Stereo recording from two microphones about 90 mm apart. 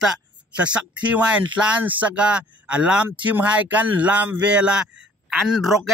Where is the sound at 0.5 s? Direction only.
15° right (ahead or behind).